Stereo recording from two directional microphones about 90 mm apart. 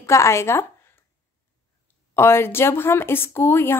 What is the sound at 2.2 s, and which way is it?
A woman's voice, 25° left (ahead or behind).